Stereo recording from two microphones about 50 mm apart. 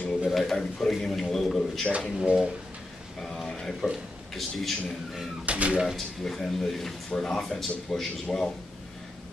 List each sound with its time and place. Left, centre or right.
0.2 s a man's voice: centre
1.9 s speech: right
3.2 s a man's voice: centre
5.4 s speech: right
5.9 s speech: centre